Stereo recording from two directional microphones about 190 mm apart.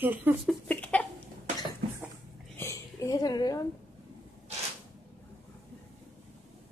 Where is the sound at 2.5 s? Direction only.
15° left (ahead or behind).